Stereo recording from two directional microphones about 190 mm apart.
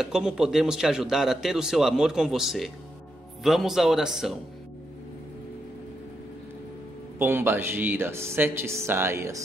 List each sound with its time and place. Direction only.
0.0 s a man's voice: 5° right (ahead or behind)
7.2 s speech: 10° right (ahead or behind)